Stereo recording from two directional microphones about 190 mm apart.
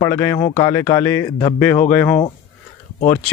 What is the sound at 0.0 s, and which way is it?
Speech, 15° left (ahead or behind).